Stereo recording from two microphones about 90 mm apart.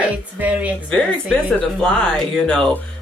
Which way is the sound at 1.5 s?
10° left (ahead or behind).